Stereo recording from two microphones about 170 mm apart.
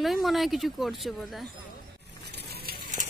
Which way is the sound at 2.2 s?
75° right (ahead or behind).